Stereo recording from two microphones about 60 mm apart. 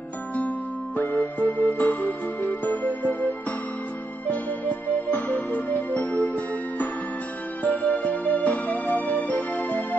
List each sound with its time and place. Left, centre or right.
0.9 s music: left
4.3 s music: left